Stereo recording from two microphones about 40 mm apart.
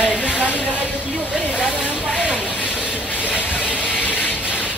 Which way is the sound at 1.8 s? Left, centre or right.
Right.